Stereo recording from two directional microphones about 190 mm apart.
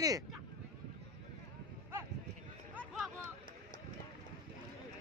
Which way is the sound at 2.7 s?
5° right (ahead or behind).